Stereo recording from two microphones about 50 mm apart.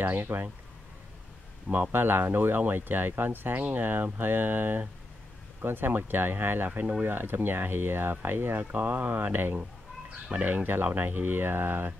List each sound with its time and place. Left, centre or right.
0.0 s speech: right
1.7 s speech: right
2.0 s speech: right